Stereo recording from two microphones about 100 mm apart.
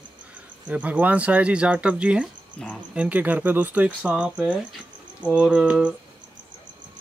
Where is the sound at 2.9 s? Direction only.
15° right (ahead or behind).